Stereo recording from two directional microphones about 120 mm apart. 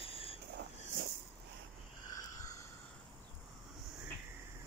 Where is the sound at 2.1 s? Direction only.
25° left (ahead or behind).